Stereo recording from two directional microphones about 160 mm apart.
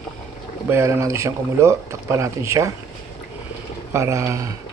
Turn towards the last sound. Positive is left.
turn(degrees=-20)  # may be behind; listen again after turning